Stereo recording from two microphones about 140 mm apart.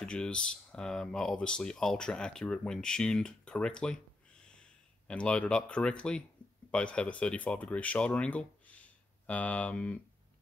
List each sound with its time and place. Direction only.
0.0 s speech: 5° left (ahead or behind)